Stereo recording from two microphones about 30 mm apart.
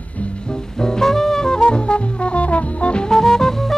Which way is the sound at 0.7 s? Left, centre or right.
Left.